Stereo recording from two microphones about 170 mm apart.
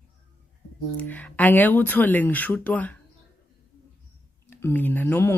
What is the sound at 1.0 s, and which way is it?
Speech, 10° left (ahead or behind).